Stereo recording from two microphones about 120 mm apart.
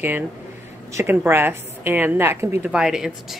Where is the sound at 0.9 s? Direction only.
20° right (ahead or behind).